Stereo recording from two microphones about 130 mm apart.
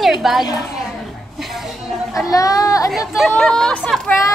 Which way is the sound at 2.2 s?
25° left (ahead or behind).